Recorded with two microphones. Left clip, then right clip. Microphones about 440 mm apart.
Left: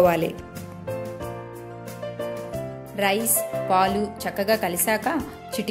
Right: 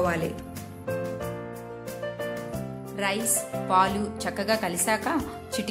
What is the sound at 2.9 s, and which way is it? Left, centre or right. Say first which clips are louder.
A woman's voice: left 5 dB; centre.